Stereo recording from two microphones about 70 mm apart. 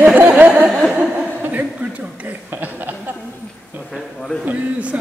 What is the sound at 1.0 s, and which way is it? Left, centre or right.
Chuckle, right.